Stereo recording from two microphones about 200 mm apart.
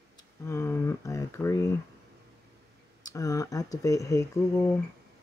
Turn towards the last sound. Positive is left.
turn(degrees=15)  # may be behind; listen again after turning